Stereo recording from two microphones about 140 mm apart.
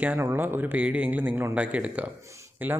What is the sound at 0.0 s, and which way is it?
Speech, 15° right (ahead or behind).